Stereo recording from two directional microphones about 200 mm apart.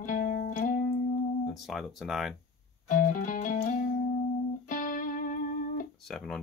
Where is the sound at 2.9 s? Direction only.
40° left (ahead or behind).